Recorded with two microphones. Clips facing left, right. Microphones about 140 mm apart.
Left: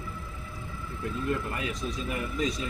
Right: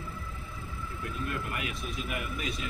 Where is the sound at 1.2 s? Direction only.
30° left (ahead or behind).